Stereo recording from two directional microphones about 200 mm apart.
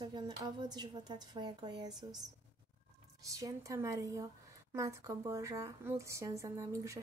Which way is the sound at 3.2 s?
15° right (ahead or behind).